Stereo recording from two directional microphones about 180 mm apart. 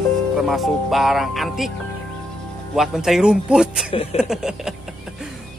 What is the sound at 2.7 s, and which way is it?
Speech, centre (ahead or behind).